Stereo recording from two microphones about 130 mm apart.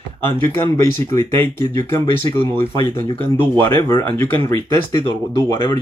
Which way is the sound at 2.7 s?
45° left (ahead or behind).